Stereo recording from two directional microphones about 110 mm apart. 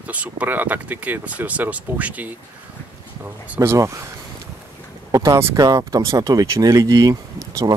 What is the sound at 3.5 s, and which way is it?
Speech, 25° right (ahead or behind).